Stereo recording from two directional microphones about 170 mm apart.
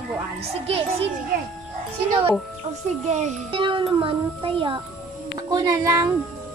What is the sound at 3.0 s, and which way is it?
Speech, 40° right (ahead or behind).